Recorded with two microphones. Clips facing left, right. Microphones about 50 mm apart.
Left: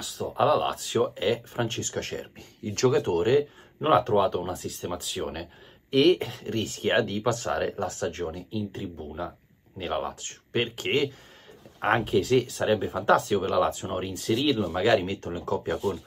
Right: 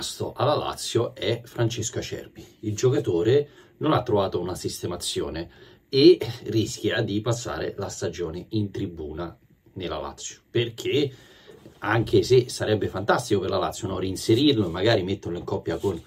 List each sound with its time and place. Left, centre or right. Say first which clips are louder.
0.3 s speech: left 1 dB; left
2.6 s speech: right 1 dB; left
3.9 s speech: left 1 dB; left
6.4 s speech: right 4 dB; left
8.7 s speech: right 4 dB; centre; by 11.1 s left
11.8 s speech: right 2 dB; left
13.9 s speech: right 5 dB; centre; by 15.8 s left